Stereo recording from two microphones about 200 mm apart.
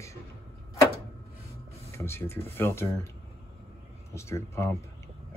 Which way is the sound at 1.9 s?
15° left (ahead or behind).